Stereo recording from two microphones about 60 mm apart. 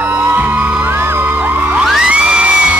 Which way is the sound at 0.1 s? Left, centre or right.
Right.